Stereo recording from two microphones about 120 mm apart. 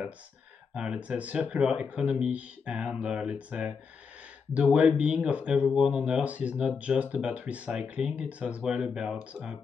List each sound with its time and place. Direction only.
0.7 s speech: 10° right (ahead or behind)